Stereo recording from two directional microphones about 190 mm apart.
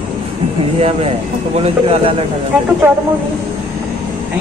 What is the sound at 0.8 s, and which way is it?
Speech, 30° right (ahead or behind).